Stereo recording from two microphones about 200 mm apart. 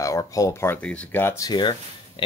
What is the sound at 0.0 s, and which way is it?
Speech, 15° left (ahead or behind).